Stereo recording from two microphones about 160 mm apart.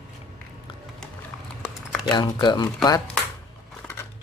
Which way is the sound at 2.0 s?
30° left (ahead or behind).